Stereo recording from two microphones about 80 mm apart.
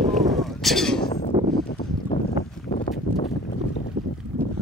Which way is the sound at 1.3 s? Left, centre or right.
Right.